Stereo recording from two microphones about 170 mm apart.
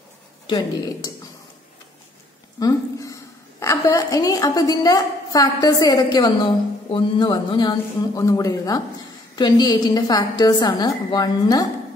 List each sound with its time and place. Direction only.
0.5 s a woman's voice: 25° left (ahead or behind)
2.6 s a woman's voice: 20° left (ahead or behind)